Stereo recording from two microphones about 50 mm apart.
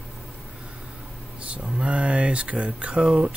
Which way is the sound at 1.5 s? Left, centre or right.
Right.